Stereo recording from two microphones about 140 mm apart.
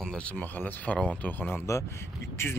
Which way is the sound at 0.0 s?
5° left (ahead or behind).